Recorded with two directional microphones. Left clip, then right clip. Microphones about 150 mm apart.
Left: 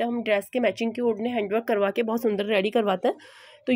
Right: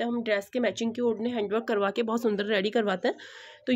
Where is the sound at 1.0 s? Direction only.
15° left (ahead or behind).